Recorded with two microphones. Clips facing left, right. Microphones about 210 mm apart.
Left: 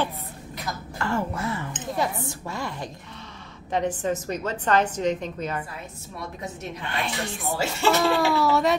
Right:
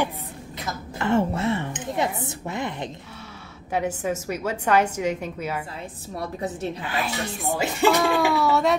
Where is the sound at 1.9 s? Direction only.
20° right (ahead or behind).